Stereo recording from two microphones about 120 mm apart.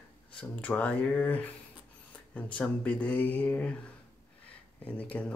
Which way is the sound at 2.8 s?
10° left (ahead or behind).